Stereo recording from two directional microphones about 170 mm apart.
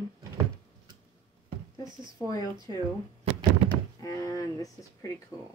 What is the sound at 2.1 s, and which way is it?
Speech, 20° left (ahead or behind).